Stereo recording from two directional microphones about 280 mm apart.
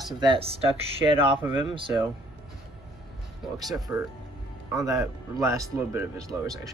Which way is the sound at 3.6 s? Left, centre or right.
Centre.